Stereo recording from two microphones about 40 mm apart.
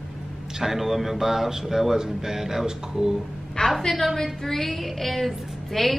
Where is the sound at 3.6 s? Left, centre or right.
Centre.